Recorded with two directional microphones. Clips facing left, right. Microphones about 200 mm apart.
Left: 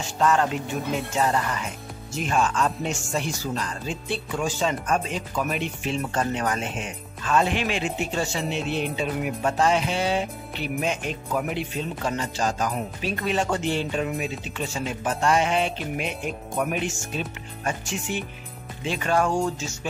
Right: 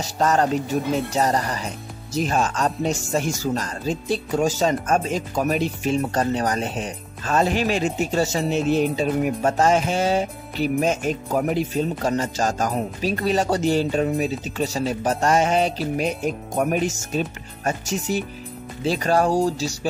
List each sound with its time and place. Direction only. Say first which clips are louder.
0.0 s speech: right 2 dB; 40° right (ahead or behind)